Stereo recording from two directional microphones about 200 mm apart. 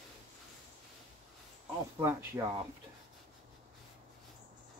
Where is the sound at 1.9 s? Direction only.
15° right (ahead or behind).